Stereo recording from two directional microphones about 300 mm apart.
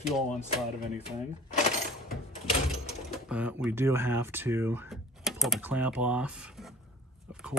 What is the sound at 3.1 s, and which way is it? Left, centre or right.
Speech, centre.